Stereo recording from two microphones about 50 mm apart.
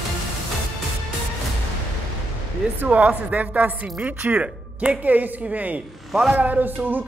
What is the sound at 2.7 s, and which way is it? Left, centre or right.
A woman's voice, right.